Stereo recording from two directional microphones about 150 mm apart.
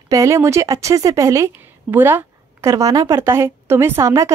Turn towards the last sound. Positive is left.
turn(degrees=-20)  # may be behind; listen again after turning